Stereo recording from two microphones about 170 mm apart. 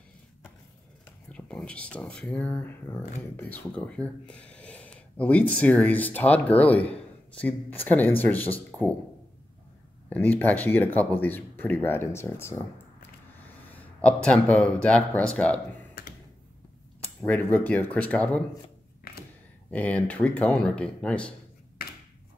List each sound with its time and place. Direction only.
1.3 s speech: 5° left (ahead or behind)
10.0 s speech: 10° left (ahead or behind)
13.7 s a man's voice: 10° left (ahead or behind)
16.0 s computer keyboard: 55° left (ahead or behind)
17.2 s speech: 10° left (ahead or behind)
19.7 s speech: 10° left (ahead or behind)
21.8 s a sound: 65° left (ahead or behind)